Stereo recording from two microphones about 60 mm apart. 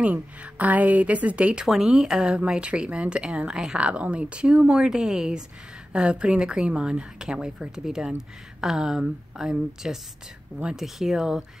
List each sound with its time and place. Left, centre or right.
0.0 s a woman's voice: right; by 11.4 s centre